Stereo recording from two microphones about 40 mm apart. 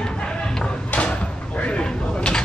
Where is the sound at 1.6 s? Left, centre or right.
Left.